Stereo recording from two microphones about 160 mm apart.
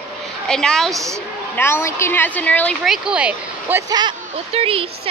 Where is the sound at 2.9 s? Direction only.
5° right (ahead or behind).